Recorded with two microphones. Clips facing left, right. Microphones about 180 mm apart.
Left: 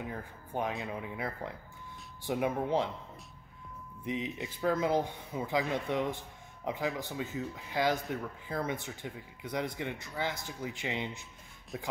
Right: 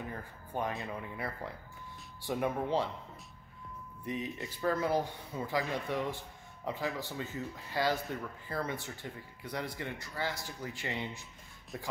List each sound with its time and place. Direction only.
0.5 s speech: 15° left (ahead or behind)
4.0 s speech: 20° left (ahead or behind)
11.7 s speech: centre (ahead or behind)